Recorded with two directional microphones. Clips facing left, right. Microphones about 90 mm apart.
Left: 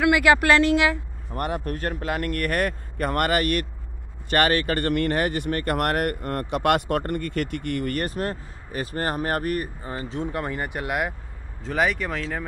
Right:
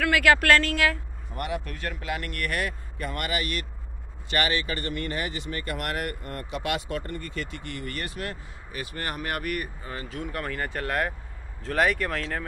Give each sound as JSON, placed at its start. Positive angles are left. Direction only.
{"t": 0.0, "sound": "a woman's voice", "side_deg": 15}
{"t": 1.3, "sound": "speech", "side_deg": 40}
{"t": 11.6, "sound": "speech", "side_deg": 0}